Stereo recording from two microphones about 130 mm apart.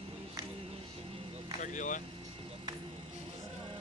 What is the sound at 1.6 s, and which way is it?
Speech, 75° left (ahead or behind).